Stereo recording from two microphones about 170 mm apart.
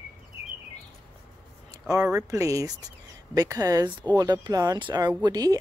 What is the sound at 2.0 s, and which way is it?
Speech, 15° right (ahead or behind).